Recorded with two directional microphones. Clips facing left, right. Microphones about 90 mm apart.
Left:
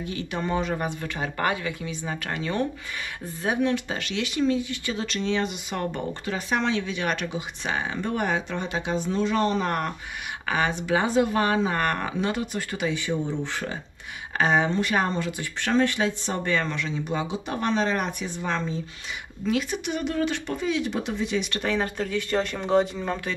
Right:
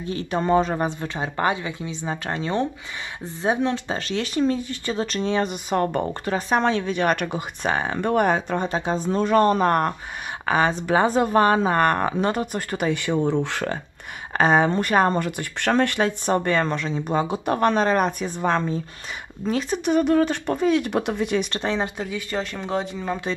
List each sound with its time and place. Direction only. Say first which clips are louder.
0.1 s speech: right 8 dB; 35° right (ahead or behind); by 13.7 s 70° right (ahead or behind)
14.3 s speech: right 4 dB; 40° right (ahead or behind)
21.5 s speech: right 1 dB; 30° right (ahead or behind)
21.8 s speech: left 1 dB; 10° right (ahead or behind)
22.3 s speech: left 4 dB; centre (ahead or behind)